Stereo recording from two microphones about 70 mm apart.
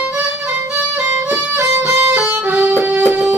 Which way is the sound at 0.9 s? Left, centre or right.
Right.